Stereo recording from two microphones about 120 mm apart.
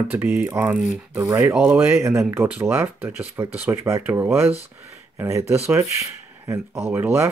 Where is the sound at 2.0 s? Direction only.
25° right (ahead or behind).